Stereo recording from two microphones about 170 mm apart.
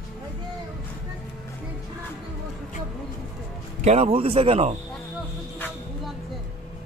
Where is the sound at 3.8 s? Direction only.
35° right (ahead or behind).